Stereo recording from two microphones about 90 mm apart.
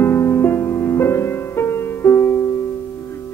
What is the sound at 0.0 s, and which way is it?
Music, 25° left (ahead or behind).